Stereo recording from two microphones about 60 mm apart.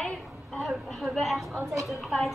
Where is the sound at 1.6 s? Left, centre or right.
Right.